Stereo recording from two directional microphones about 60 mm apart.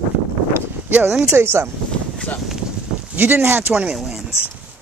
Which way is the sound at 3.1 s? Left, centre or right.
Right.